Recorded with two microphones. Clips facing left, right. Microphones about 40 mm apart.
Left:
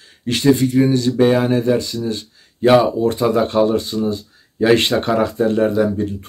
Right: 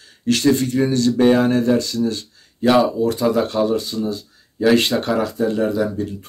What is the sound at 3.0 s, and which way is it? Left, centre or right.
Speech, left.